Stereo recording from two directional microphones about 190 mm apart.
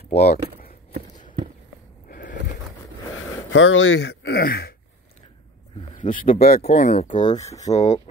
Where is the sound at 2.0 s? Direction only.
50° left (ahead or behind).